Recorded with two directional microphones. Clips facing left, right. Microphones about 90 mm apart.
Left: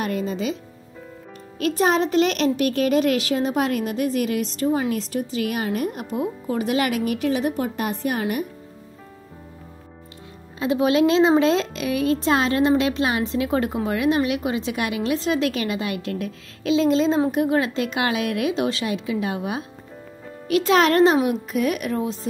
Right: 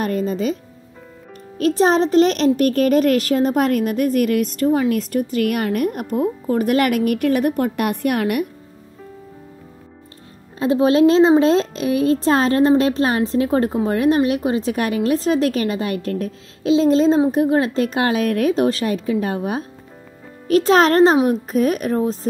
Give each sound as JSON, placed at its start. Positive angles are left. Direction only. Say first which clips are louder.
{"t": 0.0, "sound": "a child's voice", "louder": "right 4 dB", "side_deg": -40}
{"t": 1.6, "sound": "a child's voice", "louder": "right 4 dB", "side_deg": -35}
{"t": 10.6, "sound": "a woman's voice", "louder": "right 4 dB", "side_deg": -35}